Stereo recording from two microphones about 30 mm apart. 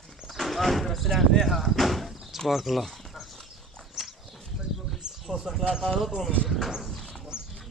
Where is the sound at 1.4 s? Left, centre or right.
Centre.